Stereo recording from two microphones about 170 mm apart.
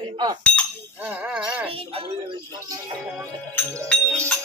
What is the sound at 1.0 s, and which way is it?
Music, 10° right (ahead or behind).